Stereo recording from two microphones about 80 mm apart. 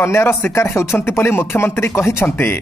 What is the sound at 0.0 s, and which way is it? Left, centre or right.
Speech, left.